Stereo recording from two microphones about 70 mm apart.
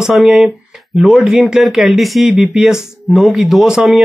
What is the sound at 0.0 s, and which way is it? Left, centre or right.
Speech, centre.